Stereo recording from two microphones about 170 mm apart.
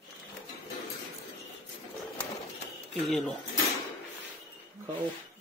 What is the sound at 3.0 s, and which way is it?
Speech, centre (ahead or behind).